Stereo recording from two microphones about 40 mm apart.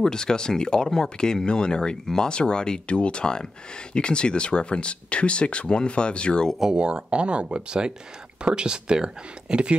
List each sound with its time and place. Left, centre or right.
0.0 s speech: centre
6.7 s speech: right